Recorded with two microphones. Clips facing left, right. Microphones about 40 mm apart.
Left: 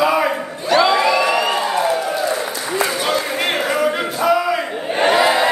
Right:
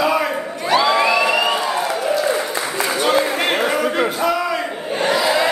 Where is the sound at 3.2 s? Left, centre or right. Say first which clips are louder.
Right 1 dB; centre.